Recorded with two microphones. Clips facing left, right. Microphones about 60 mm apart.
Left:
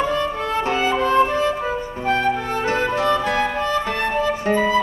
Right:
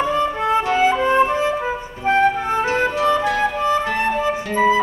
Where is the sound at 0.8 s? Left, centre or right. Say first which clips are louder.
Even; centre.